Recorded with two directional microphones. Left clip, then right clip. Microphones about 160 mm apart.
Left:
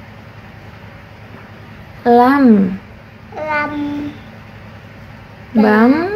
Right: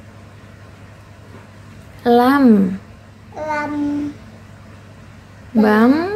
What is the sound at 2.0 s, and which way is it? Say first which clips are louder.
Speech: left 3 dB; 10° right (ahead or behind).